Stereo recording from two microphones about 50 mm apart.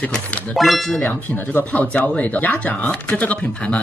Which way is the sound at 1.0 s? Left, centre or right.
Left.